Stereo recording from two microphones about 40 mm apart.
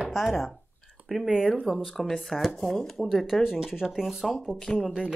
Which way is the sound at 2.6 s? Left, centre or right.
Centre.